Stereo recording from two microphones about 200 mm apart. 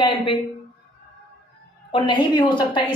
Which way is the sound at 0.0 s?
25° left (ahead or behind).